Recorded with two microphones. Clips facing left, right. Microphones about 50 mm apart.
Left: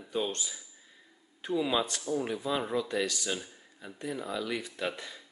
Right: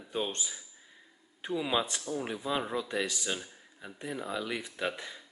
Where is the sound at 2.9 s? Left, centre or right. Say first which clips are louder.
Left 2 dB; centre.